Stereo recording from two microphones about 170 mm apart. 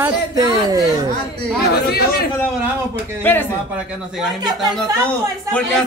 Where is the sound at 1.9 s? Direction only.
70° left (ahead or behind).